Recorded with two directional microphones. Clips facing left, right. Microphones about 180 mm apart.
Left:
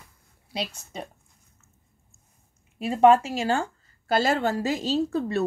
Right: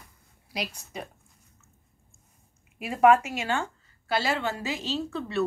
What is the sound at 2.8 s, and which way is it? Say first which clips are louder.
Speech: left 2 dB; 30° left (ahead or behind).